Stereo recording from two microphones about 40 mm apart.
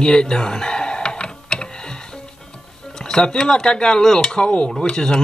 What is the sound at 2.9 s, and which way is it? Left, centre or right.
Speech, centre.